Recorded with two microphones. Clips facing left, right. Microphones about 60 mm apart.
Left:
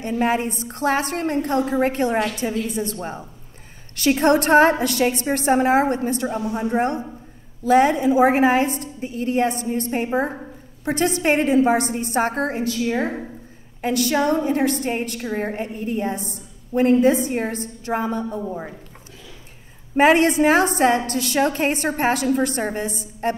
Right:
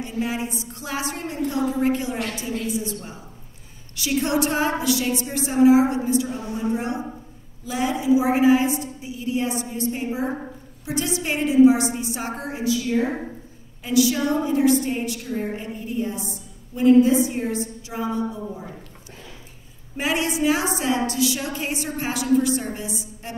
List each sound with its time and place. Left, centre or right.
0.0 s a woman's voice: left
20.0 s a woman's voice: left